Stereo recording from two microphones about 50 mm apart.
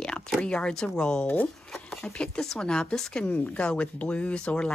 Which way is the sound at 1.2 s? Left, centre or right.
Left.